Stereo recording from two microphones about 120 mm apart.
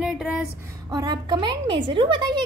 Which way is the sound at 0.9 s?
35° right (ahead or behind).